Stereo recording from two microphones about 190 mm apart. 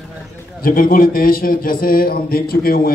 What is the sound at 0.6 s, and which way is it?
A man's voice, 50° left (ahead or behind).